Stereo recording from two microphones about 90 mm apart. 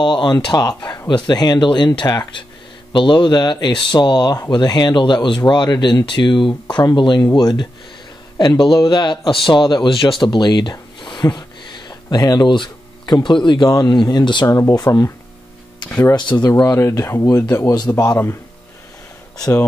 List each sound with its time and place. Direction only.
0.0 s a man's voice: 60° left (ahead or behind)
2.9 s speech: 65° left (ahead or behind)
8.8 s speech: 55° left (ahead or behind)
12.4 s speech: 55° left (ahead or behind)
14.5 s speech: 30° left (ahead or behind)
16.2 s a man's voice: 55° left (ahead or behind)
16.6 s speech: 30° left (ahead or behind)
17.6 s a man's voice: 50° left (ahead or behind)
19.3 s speech: 45° left (ahead or behind)